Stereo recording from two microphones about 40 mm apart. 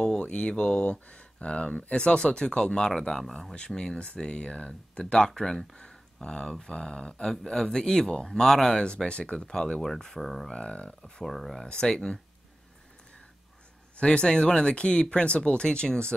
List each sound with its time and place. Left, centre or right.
0.2 s speech: left; by 3.5 s centre
3.5 s speech: left
8.8 s speech: left
9.4 s speech: centre
10.5 s speech: left
11.2 s speech: centre
13.9 s speech: left